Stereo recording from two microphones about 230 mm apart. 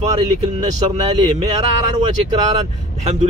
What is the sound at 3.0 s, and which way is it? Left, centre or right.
Speech, right.